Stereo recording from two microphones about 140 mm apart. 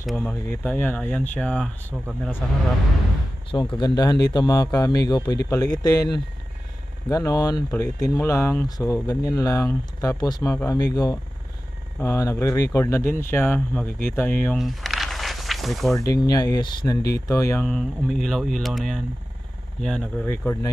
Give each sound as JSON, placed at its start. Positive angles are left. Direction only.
{"t": 0.0, "sound": "speech", "side_deg": 5}
{"t": 3.7, "sound": "speech", "side_deg": 30}
{"t": 13.8, "sound": "speech", "side_deg": 90}
{"t": 14.1, "sound": "speech", "side_deg": 15}
{"t": 14.6, "sound": "a sound", "side_deg": 0}
{"t": 16.0, "sound": "speech", "side_deg": 25}
{"t": 17.6, "sound": "speech", "side_deg": 5}
{"t": 20.2, "sound": "speech", "side_deg": 15}